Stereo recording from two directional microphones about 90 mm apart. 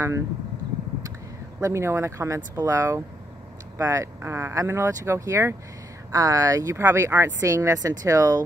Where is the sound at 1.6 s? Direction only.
30° right (ahead or behind).